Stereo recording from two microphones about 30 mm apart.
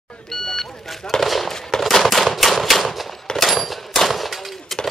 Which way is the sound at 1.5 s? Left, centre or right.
Centre.